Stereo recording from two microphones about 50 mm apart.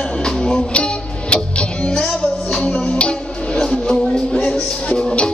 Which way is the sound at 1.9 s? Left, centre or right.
Centre.